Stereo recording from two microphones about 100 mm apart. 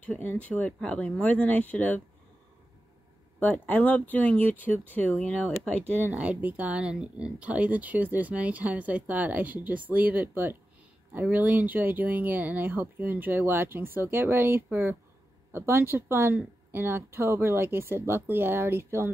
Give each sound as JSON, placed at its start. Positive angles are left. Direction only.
{"t": 0.1, "sound": "speech", "side_deg": 15}
{"t": 3.3, "sound": "speech", "side_deg": 15}
{"t": 5.9, "sound": "speech", "side_deg": -15}